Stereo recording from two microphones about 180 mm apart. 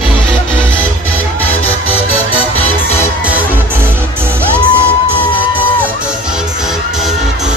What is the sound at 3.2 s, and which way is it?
Music, 10° right (ahead or behind).